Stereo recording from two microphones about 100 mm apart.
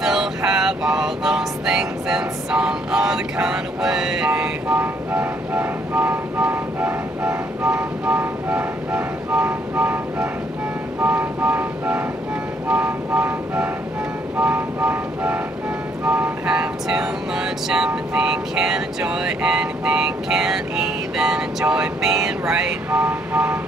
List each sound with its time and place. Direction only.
0.0 s music: 5° right (ahead or behind)
4.3 s train: 15° right (ahead or behind)
11.1 s vehicle: 15° right (ahead or behind)
16.1 s music: 10° right (ahead or behind)
22.8 s vehicle: 15° right (ahead or behind)